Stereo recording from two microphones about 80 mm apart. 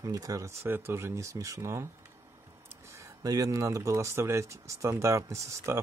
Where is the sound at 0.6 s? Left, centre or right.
Right.